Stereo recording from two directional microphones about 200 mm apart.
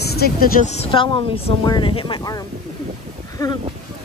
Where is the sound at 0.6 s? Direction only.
30° left (ahead or behind).